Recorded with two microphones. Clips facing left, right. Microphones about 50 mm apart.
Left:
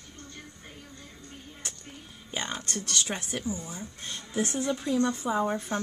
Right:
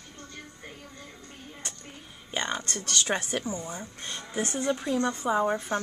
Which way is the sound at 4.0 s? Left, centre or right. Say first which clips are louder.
Left 2 dB; centre.